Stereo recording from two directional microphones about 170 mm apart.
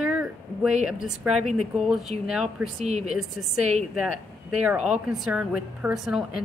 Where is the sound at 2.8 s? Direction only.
40° right (ahead or behind).